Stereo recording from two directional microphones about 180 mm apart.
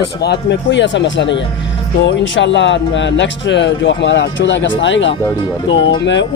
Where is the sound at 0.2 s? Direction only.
70° left (ahead or behind); by 5.1 s 90° left.